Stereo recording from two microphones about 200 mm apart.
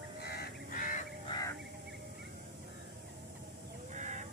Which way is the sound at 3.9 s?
35° right (ahead or behind).